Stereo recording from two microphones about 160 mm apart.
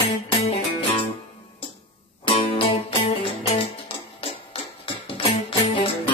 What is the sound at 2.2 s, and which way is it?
Music, 35° left (ahead or behind).